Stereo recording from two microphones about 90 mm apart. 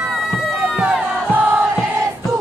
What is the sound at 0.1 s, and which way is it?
Crowd, 5° right (ahead or behind).